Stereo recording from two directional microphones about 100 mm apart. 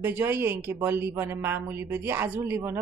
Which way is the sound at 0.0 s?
25° right (ahead or behind).